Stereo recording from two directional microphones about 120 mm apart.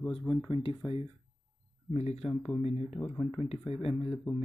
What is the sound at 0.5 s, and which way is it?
Speech, 45° left (ahead or behind).